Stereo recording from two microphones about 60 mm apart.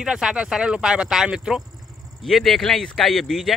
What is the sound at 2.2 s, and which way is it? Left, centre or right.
Speech, centre.